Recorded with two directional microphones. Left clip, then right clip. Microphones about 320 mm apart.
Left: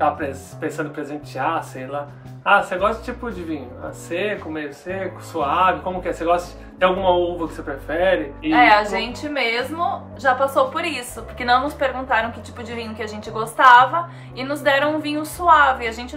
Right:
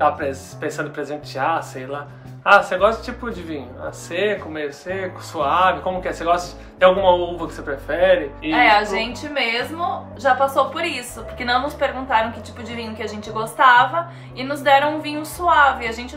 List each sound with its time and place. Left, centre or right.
0.0 s speech: centre